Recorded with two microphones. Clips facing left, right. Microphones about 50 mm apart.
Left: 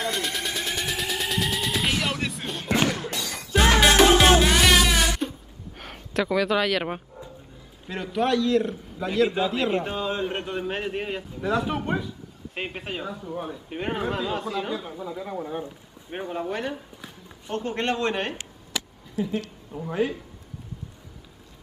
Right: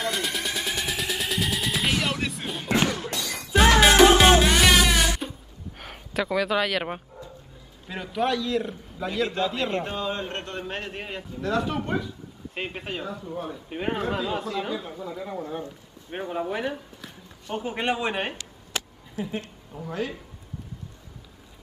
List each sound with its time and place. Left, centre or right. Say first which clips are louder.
0.0 s music: even; centre
5.8 s speech: left 2 dB; centre
16.1 s speech: right 1 dB; centre
19.7 s speech: left 3 dB; centre